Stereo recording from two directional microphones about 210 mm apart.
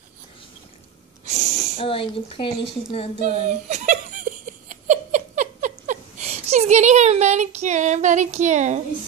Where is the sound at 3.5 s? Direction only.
35° right (ahead or behind).